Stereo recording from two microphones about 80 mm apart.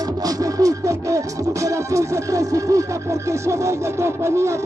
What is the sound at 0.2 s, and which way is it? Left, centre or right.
Music, right.